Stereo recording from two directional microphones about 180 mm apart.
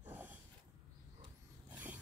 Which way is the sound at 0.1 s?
10° right (ahead or behind).